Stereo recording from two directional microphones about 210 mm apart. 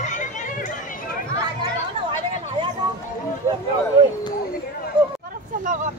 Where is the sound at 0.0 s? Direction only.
35° left (ahead or behind).